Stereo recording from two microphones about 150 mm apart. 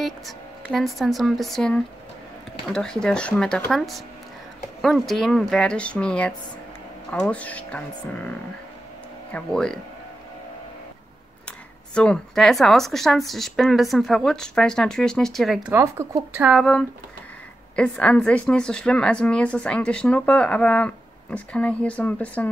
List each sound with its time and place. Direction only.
0.7 s speech: centre (ahead or behind)
11.4 s speech: 5° left (ahead or behind)
15.7 s speech: 20° right (ahead or behind)
16.4 s speech: 5° left (ahead or behind)